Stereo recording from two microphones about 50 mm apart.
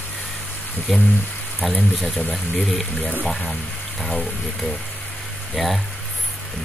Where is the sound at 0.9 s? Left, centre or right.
Centre.